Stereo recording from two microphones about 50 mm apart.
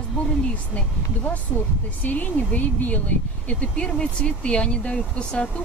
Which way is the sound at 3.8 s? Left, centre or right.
Centre.